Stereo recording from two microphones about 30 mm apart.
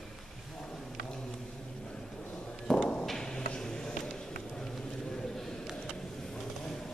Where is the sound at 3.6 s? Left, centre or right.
Centre.